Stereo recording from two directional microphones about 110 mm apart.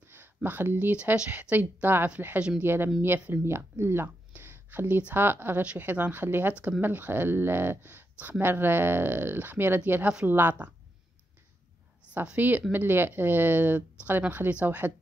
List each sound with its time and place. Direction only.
0.1 s speech: 20° right (ahead or behind)
12.1 s speech: 15° right (ahead or behind)